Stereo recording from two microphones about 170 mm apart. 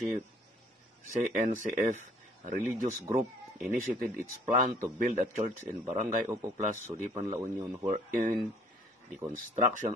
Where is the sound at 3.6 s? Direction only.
55° right (ahead or behind).